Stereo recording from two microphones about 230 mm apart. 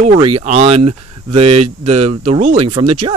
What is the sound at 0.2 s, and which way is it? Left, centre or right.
Speech, right.